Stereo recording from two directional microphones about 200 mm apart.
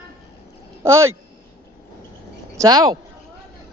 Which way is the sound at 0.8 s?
15° right (ahead or behind).